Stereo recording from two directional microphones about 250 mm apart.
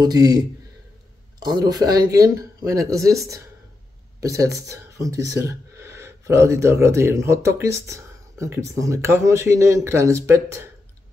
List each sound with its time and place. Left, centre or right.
0.0 s speech: centre